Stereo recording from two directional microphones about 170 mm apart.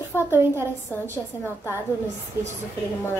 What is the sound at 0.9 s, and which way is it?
Speech, 10° left (ahead or behind).